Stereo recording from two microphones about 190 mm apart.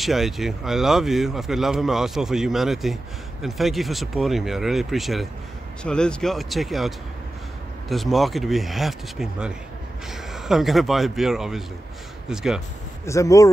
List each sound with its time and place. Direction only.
0.0 s speech: centre (ahead or behind)
7.9 s speech: centre (ahead or behind)
13.0 s speech: 15° left (ahead or behind)